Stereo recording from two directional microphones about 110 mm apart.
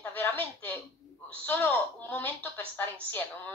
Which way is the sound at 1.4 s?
20° left (ahead or behind).